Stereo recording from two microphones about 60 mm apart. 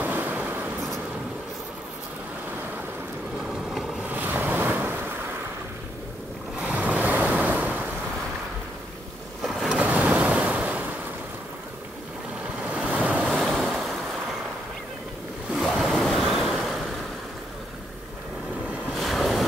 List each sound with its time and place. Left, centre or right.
0.0 s vehicle: right
3.7 s boat: centre
4.1 s waves: right
6.6 s waves: right
9.4 s waves: centre
9.8 s waves: right
12.6 s waves: right
13.3 s waves: centre
15.5 s waves: centre
18.9 s waves: centre